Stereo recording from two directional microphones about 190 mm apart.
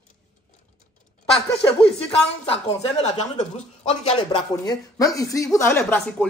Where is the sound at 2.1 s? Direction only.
30° left (ahead or behind).